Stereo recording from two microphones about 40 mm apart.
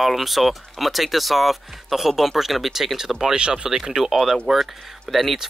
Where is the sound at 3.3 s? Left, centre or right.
Right.